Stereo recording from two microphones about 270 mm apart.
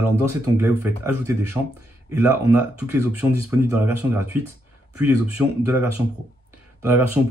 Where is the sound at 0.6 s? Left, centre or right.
Centre.